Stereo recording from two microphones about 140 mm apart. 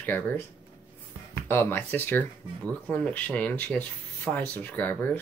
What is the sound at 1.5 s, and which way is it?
Speech, 15° left (ahead or behind).